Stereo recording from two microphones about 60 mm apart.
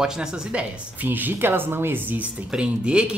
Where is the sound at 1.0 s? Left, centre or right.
Right.